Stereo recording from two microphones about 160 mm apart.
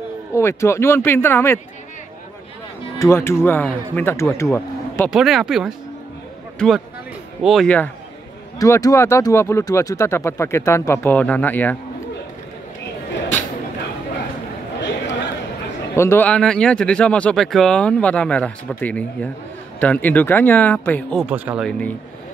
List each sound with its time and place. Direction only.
0.3 s speech: 15° left (ahead or behind)
3.0 s speech: 15° left (ahead or behind)
5.1 s speech: centre (ahead or behind)
8.5 s speech: 20° left (ahead or behind)
16.0 s speech: 15° left (ahead or behind)
21.2 s speech: 5° right (ahead or behind)
21.6 s speech: 5° left (ahead or behind)